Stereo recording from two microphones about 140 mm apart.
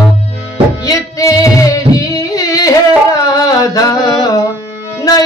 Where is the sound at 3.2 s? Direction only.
25° left (ahead or behind).